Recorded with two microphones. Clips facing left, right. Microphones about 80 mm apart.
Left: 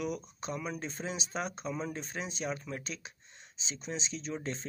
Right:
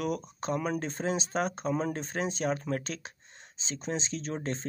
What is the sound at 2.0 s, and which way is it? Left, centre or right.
Speech, right.